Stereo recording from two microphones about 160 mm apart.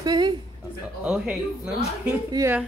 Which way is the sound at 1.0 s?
5° right (ahead or behind).